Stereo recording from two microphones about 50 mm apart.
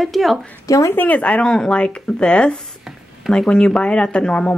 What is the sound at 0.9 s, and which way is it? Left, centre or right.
Speech, left.